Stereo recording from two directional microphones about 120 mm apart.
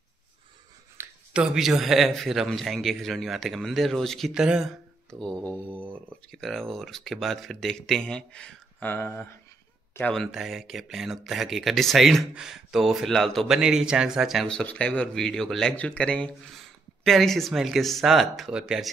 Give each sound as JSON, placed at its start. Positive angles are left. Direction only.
{"t": 1.0, "sound": "a sound", "side_deg": -20}
{"t": 1.3, "sound": "speech", "side_deg": -5}
{"t": 5.1, "sound": "speech", "side_deg": 5}
{"t": 5.5, "sound": "mantra", "side_deg": -15}
{"t": 6.3, "sound": "speech", "side_deg": 0}
{"t": 10.1, "sound": "speech", "side_deg": 0}